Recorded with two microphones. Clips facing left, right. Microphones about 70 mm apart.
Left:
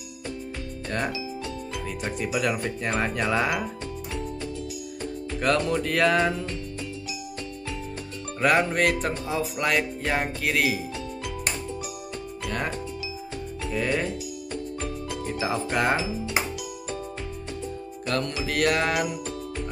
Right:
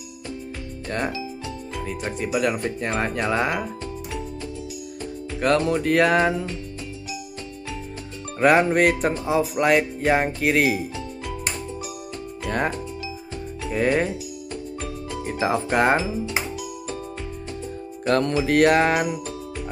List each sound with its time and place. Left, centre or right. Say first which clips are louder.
0.8 s speech: right 2 dB; centre
5.4 s music: right 4 dB; centre
8.4 s music: right 5 dB; right
12.4 s speech: right 6 dB; right
13.7 s speech: right 6 dB; right
15.2 s speech: right 5 dB; right
16.0 s speech: right 3 dB; centre
18.0 s music: right 8 dB; right